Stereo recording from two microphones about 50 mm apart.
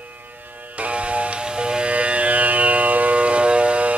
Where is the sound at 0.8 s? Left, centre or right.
Right.